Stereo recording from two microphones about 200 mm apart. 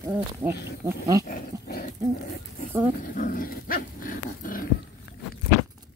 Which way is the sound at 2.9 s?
40° left (ahead or behind).